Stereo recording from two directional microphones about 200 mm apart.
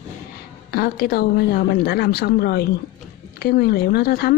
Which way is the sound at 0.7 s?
50° left (ahead or behind).